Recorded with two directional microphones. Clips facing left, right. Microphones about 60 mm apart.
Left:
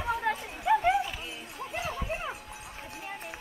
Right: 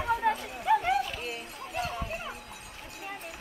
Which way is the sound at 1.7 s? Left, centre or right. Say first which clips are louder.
Even; left.